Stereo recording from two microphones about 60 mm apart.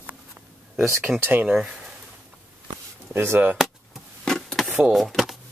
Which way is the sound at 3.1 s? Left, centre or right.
Right.